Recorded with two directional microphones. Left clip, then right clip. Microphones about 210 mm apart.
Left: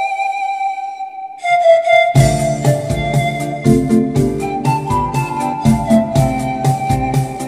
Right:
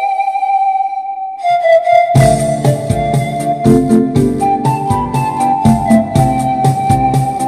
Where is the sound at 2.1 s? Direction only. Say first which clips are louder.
Right 4 dB; 50° right (ahead or behind).